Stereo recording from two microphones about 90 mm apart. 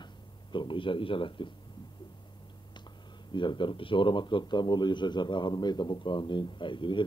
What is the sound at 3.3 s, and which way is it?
A man's voice, 60° left (ahead or behind).